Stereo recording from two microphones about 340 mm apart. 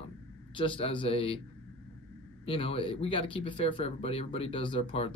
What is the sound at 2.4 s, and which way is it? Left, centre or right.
Speech, centre.